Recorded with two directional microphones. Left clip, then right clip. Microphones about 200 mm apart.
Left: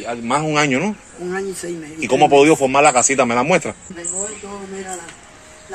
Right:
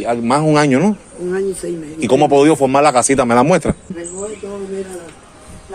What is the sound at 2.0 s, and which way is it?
Speech, 25° right (ahead or behind).